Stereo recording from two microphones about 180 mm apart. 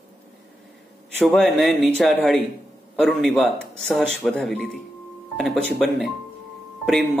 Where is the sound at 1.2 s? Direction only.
Centre (ahead or behind).